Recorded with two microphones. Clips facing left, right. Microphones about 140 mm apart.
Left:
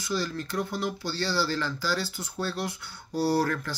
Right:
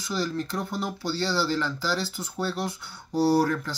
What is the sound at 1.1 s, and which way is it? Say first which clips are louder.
Speech: right 4 dB; 20° right (ahead or behind).